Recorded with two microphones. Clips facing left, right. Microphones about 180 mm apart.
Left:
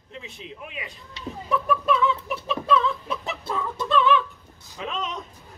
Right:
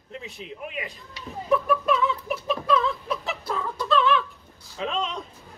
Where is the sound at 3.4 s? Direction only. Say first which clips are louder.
Even; 25° left (ahead or behind).